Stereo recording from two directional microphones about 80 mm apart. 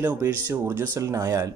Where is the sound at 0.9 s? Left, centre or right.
Right.